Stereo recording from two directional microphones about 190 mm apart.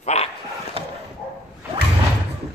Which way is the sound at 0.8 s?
30° right (ahead or behind).